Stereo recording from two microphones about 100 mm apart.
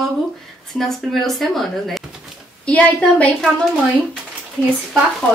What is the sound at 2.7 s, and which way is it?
Speech, 15° left (ahead or behind).